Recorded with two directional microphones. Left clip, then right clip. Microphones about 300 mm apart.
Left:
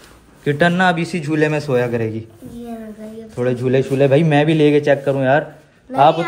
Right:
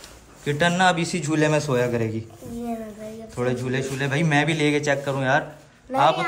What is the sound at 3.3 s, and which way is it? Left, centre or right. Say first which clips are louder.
A man's voice: left 8 dB; centre.